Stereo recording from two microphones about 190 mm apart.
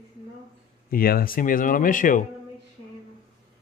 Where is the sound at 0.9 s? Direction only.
50° left (ahead or behind).